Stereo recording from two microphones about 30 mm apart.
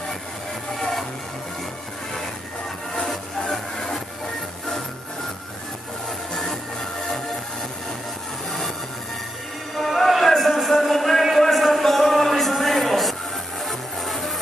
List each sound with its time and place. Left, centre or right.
2.9 s music: centre
6.3 s music: centre
8.5 s train: centre
9.8 s music: centre
10.7 s a sound: centre
13.6 s music: centre